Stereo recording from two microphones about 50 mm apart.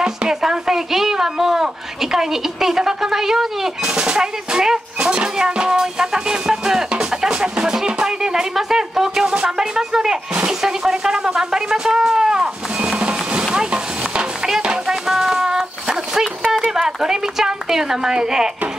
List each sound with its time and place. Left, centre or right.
0.0 s speech: centre
9.3 s a sound: centre
13.0 s music: right
13.7 s stir: centre